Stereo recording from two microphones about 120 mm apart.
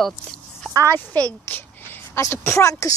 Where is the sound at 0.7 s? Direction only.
30° right (ahead or behind).